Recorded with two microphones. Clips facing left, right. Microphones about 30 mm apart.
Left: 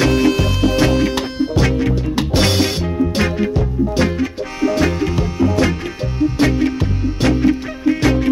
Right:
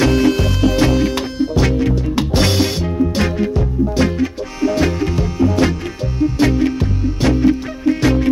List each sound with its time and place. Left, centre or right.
0.0 s music: centre